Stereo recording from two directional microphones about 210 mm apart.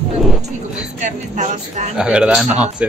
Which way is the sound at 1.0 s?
35° right (ahead or behind).